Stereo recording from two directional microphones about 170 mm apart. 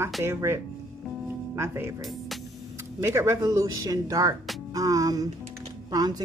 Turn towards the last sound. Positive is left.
turn(degrees=-25)  # may be behind; listen again after turning